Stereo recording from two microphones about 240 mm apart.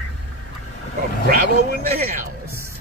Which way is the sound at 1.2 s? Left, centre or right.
Right.